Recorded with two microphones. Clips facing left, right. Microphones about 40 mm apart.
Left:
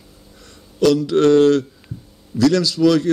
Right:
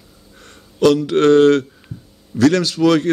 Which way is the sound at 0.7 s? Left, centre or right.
Right.